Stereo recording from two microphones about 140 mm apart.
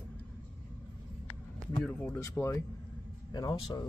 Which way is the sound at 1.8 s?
15° left (ahead or behind).